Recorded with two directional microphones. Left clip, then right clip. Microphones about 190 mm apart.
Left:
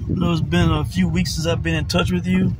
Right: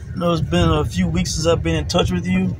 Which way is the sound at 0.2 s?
5° left (ahead or behind).